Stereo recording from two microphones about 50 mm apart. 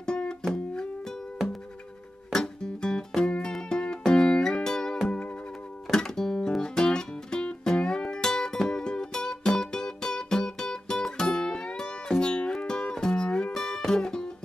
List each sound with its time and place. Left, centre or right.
0.0 s music: centre
2.3 s music: centre
13.5 s music: centre